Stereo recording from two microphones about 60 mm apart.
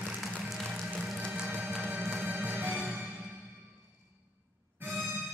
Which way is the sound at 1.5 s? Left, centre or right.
Right.